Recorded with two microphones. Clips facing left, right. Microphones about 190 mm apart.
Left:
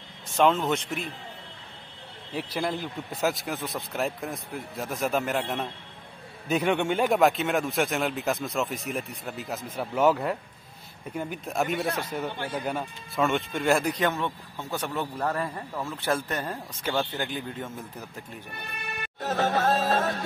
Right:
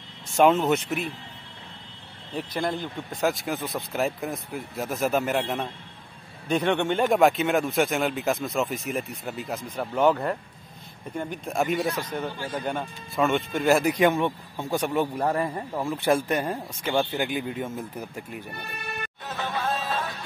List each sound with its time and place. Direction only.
0.4 s speech: 10° right (ahead or behind)
2.3 s speech: 5° left (ahead or behind); by 18.2 s 10° right (ahead or behind)
19.2 s music: 45° left (ahead or behind)